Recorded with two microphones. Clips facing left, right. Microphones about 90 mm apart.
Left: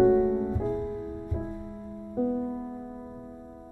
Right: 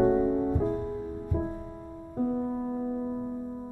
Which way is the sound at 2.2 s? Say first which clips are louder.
Even; 30° right (ahead or behind).